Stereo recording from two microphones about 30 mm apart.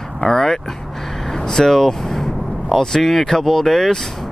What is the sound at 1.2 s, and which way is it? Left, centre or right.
Vehicle, left.